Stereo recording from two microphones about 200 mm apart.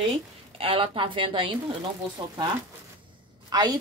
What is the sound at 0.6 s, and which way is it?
A woman's voice, 25° right (ahead or behind).